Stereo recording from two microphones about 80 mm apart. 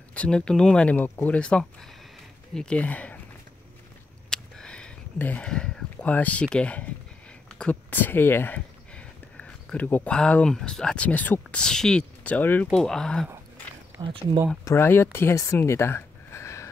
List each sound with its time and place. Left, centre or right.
0.1 s speech: centre
0.9 s speech: left
4.3 s a sound: centre
5.5 s speech: centre
7.4 s a sound: centre
7.9 s speech: left
8.5 s a sound: centre
10.1 s speech: centre
11.5 s speech: centre
12.7 s speech: centre
14.0 s speech: right
14.6 s speech: left
15.3 s a sound: left